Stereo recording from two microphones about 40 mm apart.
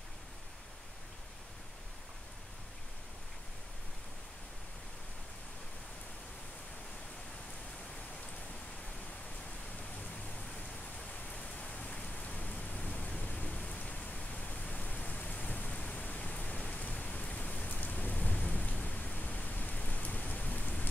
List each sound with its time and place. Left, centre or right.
11.6 s rain: left